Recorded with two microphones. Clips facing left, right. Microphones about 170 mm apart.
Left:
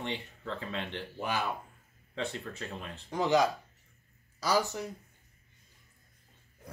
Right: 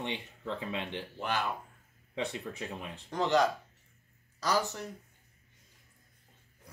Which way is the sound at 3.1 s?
10° left (ahead or behind).